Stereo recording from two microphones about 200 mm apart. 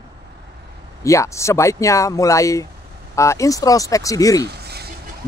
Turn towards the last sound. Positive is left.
turn(degrees=-55)  # may be behind; listen again after turning